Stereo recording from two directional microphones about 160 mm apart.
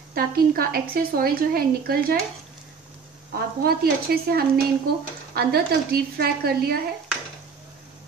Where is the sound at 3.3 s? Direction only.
70° right (ahead or behind).